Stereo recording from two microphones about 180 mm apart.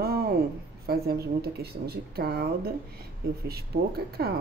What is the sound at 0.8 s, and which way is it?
A woman's voice, 60° right (ahead or behind).